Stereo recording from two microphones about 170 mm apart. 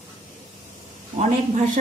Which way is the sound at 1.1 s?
45° right (ahead or behind).